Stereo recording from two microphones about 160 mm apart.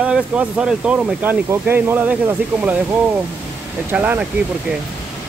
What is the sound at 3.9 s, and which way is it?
Speech, 10° right (ahead or behind).